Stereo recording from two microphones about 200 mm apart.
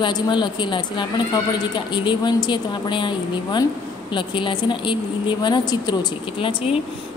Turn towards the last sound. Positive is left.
turn(degrees=25)  # may be behind; listen again after turning